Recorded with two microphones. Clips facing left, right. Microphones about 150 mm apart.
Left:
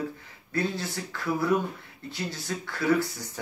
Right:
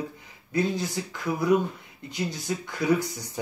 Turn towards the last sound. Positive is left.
turn(degrees=-15)  # may be behind; listen again after turning